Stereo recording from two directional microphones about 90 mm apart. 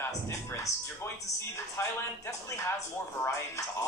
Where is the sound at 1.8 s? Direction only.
30° left (ahead or behind).